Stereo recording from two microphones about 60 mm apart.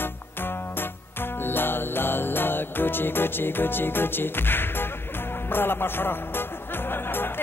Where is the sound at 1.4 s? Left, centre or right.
Left.